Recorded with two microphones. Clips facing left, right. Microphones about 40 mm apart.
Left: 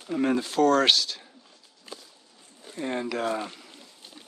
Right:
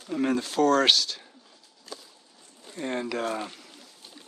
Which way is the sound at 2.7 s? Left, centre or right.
Centre.